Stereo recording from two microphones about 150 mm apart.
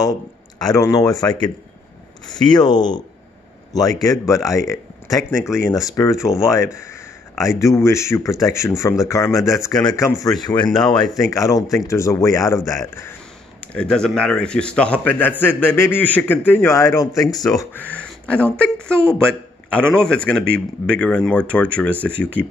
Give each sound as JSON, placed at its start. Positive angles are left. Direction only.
{"t": 0.6, "sound": "speech", "side_deg": 20}
{"t": 4.0, "sound": "speech", "side_deg": 20}
{"t": 10.7, "sound": "speech", "side_deg": 5}
{"t": 11.2, "sound": "speech", "side_deg": 20}
{"t": 13.7, "sound": "speech", "side_deg": 5}
{"t": 17.7, "sound": "speech", "side_deg": 10}